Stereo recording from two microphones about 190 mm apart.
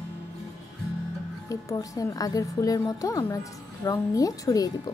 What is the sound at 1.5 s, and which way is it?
A woman's voice, 15° left (ahead or behind).